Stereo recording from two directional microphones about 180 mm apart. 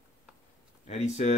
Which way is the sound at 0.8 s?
40° left (ahead or behind).